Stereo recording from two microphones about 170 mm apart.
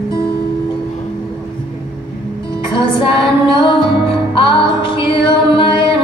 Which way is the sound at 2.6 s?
30° left (ahead or behind).